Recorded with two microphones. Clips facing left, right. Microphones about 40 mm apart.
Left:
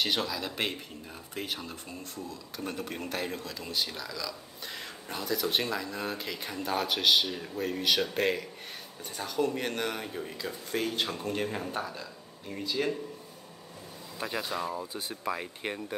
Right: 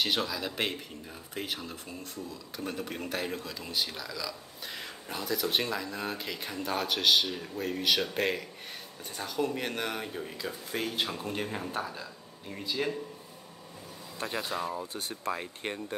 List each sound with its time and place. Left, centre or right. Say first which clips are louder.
0.0 s speech: even; centre
14.2 s speech: even; centre